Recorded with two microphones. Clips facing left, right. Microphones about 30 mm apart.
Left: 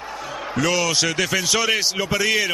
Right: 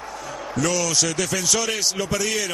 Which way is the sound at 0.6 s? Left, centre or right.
Left.